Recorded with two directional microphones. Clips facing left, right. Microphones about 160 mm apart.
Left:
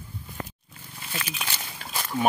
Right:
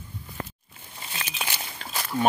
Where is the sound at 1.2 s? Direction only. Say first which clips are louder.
Left 1 dB; 30° right (ahead or behind).